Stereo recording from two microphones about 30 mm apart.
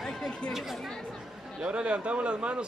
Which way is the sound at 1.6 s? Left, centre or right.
Right.